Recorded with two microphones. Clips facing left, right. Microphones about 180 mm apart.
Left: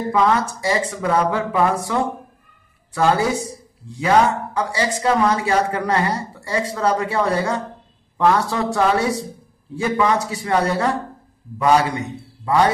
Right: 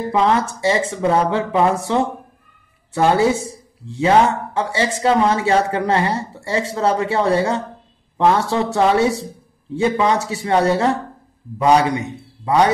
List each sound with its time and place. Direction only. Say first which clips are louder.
0.1 s speech: right 1 dB; 25° right (ahead or behind)